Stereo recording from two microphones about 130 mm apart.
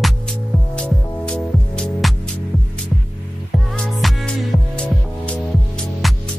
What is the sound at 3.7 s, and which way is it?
Music, centre (ahead or behind).